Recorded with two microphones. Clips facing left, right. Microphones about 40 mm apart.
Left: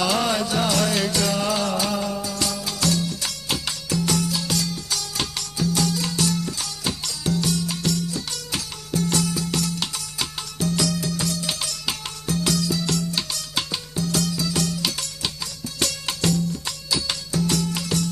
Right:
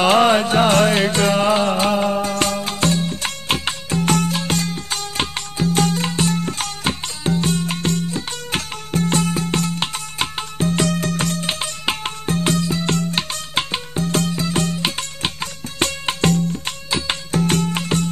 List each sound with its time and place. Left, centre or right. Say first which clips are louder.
0.0 s music: right 8 dB; right